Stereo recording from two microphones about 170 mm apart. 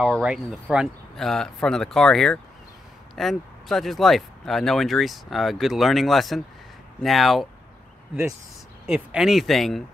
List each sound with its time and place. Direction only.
0.0 s speech: 5° right (ahead or behind)
8.8 s speech: 5° right (ahead or behind)